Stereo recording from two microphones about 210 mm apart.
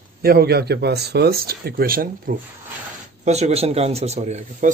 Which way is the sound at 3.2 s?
30° right (ahead or behind).